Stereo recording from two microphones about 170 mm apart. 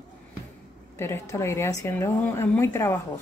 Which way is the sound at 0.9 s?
15° left (ahead or behind).